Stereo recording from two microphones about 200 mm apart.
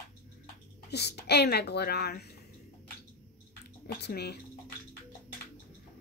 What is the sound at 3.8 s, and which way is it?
Speech, 55° left (ahead or behind).